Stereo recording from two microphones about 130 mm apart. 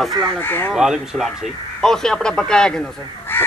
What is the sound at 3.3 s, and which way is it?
Crow, 15° left (ahead or behind).